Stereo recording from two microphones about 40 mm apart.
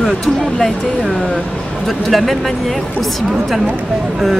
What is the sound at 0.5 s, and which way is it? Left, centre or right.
Speech, centre.